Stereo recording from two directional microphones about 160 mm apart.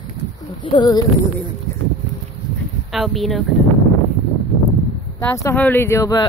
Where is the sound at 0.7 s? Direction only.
25° left (ahead or behind).